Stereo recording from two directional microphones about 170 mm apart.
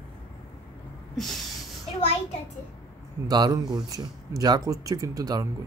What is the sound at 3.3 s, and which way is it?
Speech, 25° right (ahead or behind).